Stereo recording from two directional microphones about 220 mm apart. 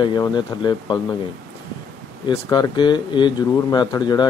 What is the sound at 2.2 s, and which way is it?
Speech, 20° left (ahead or behind).